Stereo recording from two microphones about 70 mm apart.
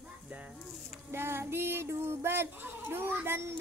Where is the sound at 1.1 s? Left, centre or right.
Right.